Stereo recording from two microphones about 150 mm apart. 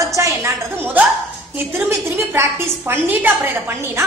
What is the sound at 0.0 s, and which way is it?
A woman's voice, 20° right (ahead or behind).